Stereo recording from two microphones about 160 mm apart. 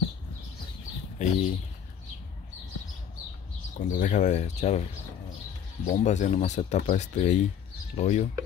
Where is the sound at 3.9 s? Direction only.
55° left (ahead or behind).